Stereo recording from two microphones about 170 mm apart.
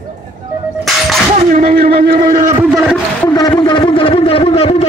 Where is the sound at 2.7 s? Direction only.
5° right (ahead or behind).